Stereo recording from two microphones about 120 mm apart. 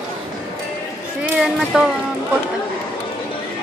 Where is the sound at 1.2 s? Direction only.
5° right (ahead or behind).